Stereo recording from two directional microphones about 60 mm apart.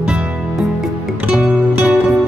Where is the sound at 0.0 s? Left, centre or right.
Centre.